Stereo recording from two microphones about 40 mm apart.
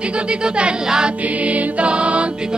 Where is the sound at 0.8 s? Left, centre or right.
Centre.